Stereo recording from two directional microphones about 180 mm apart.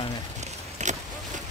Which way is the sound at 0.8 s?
40° right (ahead or behind).